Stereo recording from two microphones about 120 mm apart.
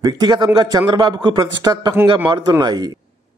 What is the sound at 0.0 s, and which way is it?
A man's voice, 35° right (ahead or behind).